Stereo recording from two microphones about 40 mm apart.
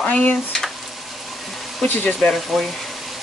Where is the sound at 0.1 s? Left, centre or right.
Left.